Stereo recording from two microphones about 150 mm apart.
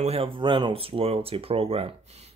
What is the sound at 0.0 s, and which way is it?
Speech, 40° right (ahead or behind).